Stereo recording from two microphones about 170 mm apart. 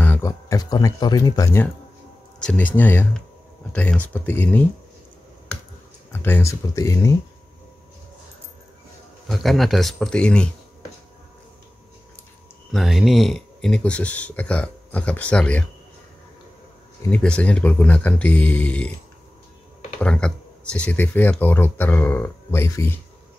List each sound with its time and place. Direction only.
0.0 s speech: 15° left (ahead or behind)
6.1 s speech: 15° left (ahead or behind)
9.3 s speech: centre (ahead or behind)
12.7 s speech: centre (ahead or behind)
17.1 s speech: 5° left (ahead or behind)
20.0 s speech: 5° left (ahead or behind)